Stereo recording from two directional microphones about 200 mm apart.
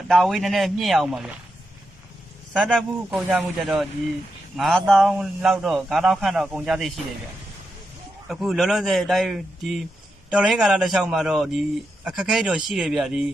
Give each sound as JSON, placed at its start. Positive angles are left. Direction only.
{"t": 0.1, "sound": "a man's voice", "side_deg": 0}
{"t": 2.5, "sound": "a man's voice", "side_deg": 0}
{"t": 8.3, "sound": "a man's voice", "side_deg": 0}